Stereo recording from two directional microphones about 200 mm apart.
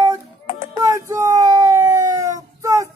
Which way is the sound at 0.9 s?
15° right (ahead or behind).